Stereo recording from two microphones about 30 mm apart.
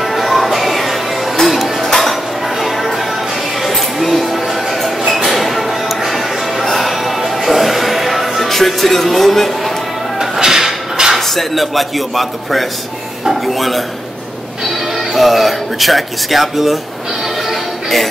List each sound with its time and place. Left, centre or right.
0.0 s music: centre
1.9 s a sound: centre
2.6 s music: centre
3.6 s a sound: centre
7.2 s music: centre
10.4 s a sound: centre
11.1 s speech: centre
15.1 s speech: centre
17.5 s music: centre